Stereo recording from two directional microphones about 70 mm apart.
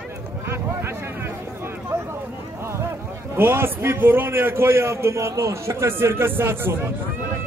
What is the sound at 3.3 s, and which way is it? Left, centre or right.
A man's voice, right.